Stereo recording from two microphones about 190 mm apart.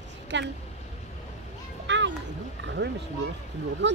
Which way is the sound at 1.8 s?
70° right (ahead or behind).